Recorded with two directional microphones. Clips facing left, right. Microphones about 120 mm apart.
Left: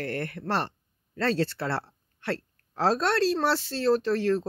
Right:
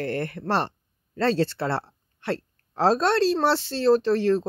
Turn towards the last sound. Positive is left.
turn(degrees=-30)  # may be behind; listen again after turning